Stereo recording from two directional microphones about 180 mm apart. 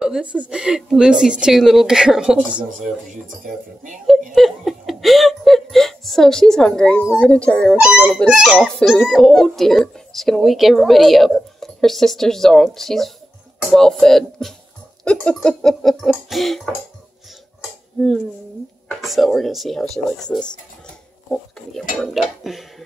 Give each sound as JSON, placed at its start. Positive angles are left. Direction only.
{"t": 0.0, "sound": "speech", "side_deg": -5}
{"t": 3.4, "sound": "speech", "side_deg": -45}
{"t": 4.4, "sound": "speech", "side_deg": 0}
{"t": 7.7, "sound": "speech", "side_deg": -10}
{"t": 18.9, "sound": "speech", "side_deg": 0}